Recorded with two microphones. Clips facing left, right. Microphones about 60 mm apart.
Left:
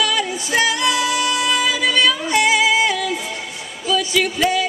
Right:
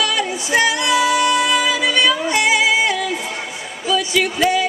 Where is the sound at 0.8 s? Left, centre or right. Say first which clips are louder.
Right 3 dB; centre.